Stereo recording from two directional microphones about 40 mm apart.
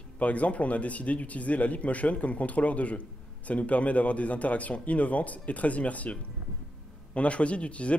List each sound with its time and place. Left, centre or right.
0.2 s speech: left
7.2 s speech: left